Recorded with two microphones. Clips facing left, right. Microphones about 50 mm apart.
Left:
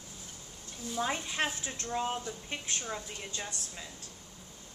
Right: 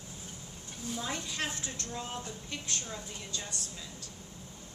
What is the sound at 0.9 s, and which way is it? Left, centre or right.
Speech, left.